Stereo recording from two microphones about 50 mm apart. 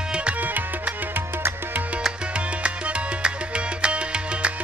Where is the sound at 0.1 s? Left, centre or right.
Right.